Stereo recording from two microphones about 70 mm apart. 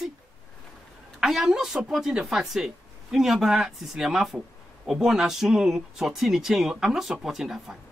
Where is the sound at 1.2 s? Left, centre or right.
Centre.